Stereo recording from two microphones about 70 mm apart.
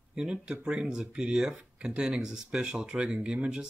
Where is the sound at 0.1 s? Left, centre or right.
Centre.